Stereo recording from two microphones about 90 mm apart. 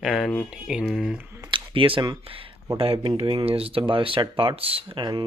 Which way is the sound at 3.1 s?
85° right.